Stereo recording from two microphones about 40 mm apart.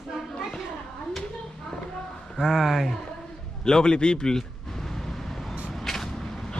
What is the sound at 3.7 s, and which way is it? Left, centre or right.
Speech, left.